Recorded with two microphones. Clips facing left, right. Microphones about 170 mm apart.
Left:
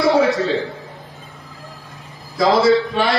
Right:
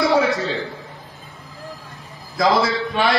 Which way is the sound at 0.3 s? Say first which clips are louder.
Left 4 dB; centre (ahead or behind).